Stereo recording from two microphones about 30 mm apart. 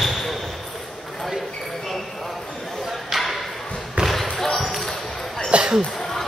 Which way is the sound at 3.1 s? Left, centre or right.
Centre.